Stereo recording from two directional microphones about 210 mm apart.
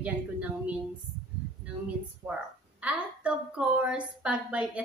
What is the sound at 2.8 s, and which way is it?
A woman's voice, 5° right (ahead or behind).